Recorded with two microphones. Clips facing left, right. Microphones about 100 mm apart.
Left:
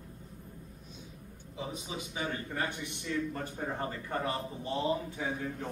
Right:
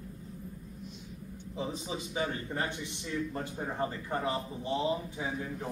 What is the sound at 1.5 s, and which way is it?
A man's voice, 30° right (ahead or behind).